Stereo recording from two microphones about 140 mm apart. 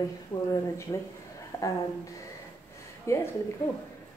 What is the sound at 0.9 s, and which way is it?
Speech, 25° left (ahead or behind).